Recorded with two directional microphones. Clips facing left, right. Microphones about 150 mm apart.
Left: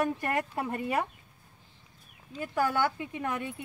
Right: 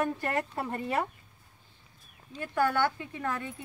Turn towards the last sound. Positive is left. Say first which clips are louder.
# left 1 dB
turn(degrees=15)  # may be behind; listen again after turning